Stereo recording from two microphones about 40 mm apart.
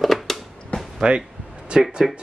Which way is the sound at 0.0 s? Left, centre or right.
Centre.